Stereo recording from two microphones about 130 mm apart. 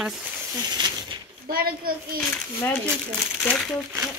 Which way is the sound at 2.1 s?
15° left (ahead or behind).